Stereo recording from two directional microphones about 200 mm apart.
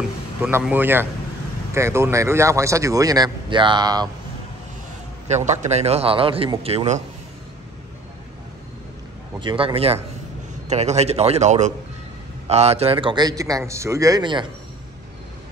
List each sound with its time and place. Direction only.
0.4 s speech: 10° right (ahead or behind)
5.3 s a man's voice: 35° right (ahead or behind)
9.4 s a man's voice: 25° right (ahead or behind)